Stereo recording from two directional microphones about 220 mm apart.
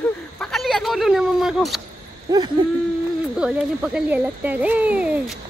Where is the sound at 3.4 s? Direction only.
5° right (ahead or behind).